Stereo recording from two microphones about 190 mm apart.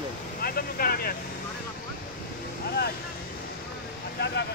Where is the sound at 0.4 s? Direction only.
50° left (ahead or behind).